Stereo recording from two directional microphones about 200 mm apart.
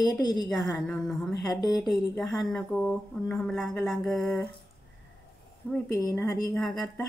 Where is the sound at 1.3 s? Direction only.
20° left (ahead or behind).